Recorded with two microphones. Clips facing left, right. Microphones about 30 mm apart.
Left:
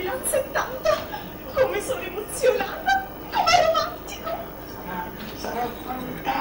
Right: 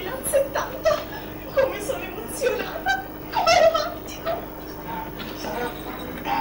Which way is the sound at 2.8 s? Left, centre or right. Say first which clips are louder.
Left 3 dB; centre.